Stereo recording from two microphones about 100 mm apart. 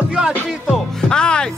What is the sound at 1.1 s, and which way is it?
Music, 10° left (ahead or behind).